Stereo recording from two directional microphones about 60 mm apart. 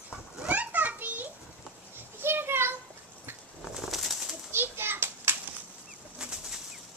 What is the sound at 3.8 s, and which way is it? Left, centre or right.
Bird, centre.